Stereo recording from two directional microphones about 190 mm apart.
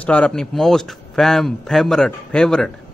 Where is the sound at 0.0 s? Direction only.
5° left (ahead or behind).